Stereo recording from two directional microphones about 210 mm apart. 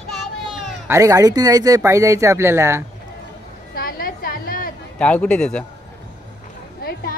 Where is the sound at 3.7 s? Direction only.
45° left (ahead or behind).